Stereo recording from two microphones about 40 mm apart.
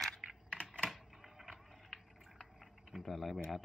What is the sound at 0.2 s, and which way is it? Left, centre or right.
Typing, centre.